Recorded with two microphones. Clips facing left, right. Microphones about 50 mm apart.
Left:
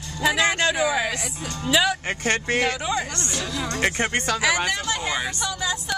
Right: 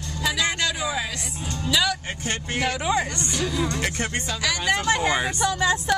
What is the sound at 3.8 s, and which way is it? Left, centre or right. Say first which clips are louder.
Speech: left 4 dB; left.